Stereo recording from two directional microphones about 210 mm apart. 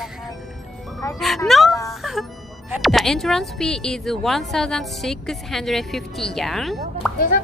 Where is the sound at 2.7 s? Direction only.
Centre (ahead or behind).